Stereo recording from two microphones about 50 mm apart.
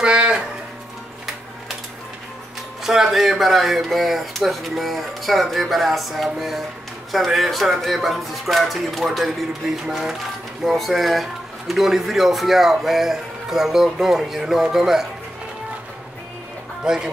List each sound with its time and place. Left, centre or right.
0.0 s music: centre
2.8 s speech: centre
16.8 s speech: centre